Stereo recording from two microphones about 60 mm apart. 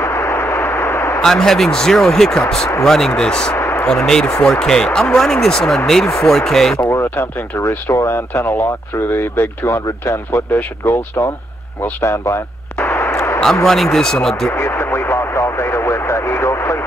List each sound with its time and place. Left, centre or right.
0.0 s a sound: left
1.2 s speech: centre
3.5 s a sound: left
3.8 s speech: centre
6.9 s speech: left
9.7 s speech: left
12.0 s artillery fire: left
13.9 s speech: centre
14.5 s radio: left
16.0 s speech: left